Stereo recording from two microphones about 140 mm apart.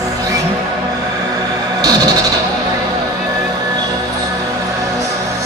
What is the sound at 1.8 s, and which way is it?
Music, 25° right (ahead or behind).